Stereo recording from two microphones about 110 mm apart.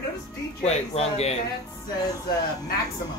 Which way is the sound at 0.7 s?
70° left (ahead or behind).